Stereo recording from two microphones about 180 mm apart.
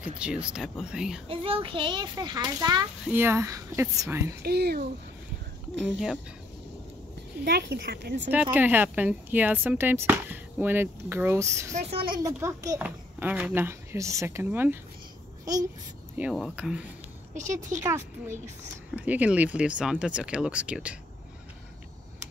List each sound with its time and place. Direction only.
0.2 s speech: 5° right (ahead or behind)
1.2 s a child's voice: 30° right (ahead or behind)
3.1 s speech: 10° right (ahead or behind)
4.4 s speech: 60° right (ahead or behind)
7.4 s speech: 60° right (ahead or behind)
8.3 s speech: 10° right (ahead or behind)
11.7 s speech: 35° right (ahead or behind)
12.2 s a child's voice: 15° right (ahead or behind)
16.2 s speech: 5° right (ahead or behind)
17.8 s speech: 15° right (ahead or behind)